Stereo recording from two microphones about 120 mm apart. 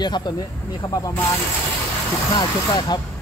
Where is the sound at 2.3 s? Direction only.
35° left (ahead or behind).